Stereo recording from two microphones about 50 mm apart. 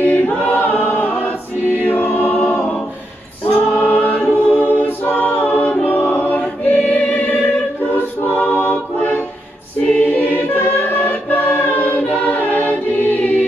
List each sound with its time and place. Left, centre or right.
0.0 s choir: left
3.7 s music: left
4.0 s choir: left
5.9 s music: left
6.4 s choir: left
7.1 s choir: left